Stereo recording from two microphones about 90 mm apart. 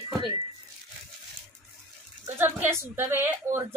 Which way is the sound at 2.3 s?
25° right (ahead or behind).